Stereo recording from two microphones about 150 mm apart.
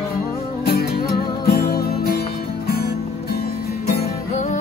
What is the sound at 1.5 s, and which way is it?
Music, 90° left.